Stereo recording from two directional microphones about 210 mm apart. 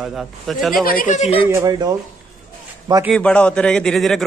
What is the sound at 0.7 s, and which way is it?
Speech, 45° left (ahead or behind).